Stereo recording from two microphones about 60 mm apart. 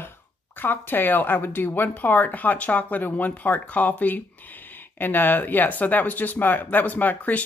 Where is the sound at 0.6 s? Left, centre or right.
Left.